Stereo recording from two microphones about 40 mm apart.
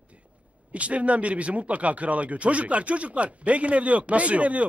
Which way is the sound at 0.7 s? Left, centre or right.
Right.